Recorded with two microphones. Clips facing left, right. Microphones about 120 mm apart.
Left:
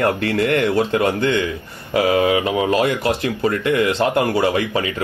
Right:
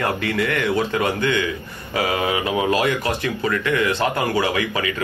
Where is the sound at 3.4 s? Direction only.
40° left (ahead or behind).